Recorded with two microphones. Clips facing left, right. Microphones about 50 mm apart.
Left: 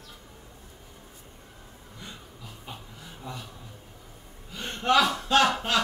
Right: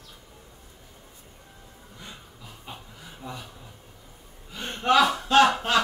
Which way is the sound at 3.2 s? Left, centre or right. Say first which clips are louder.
Right 1 dB; centre.